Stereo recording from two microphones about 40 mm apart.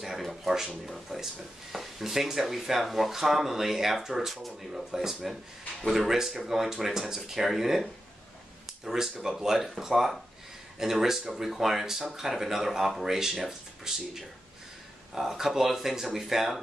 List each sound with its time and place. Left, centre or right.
0.0 s speech: centre
8.8 s speech: centre